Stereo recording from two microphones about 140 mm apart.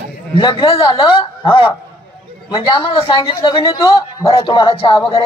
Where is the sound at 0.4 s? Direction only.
40° left (ahead or behind).